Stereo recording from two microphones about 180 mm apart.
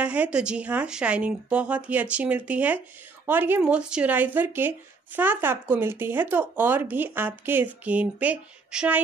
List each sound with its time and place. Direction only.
0.0 s speech: 5° right (ahead or behind)